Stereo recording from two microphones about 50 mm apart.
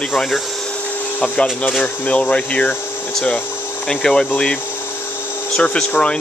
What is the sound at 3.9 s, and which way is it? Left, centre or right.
Speech, centre.